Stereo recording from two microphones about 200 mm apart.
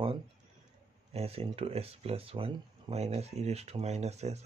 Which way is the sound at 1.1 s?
30° right (ahead or behind).